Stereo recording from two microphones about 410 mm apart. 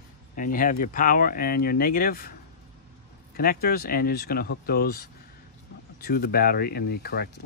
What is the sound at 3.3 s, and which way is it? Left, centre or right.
Speech, left.